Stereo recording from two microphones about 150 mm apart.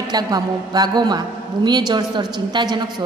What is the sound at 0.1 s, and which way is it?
A woman's voice, 25° right (ahead or behind).